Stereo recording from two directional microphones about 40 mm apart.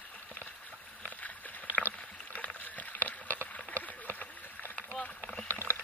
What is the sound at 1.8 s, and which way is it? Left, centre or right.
Rowboat, right.